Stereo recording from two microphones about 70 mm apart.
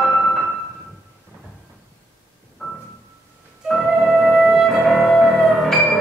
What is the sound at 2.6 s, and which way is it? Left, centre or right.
Music, centre.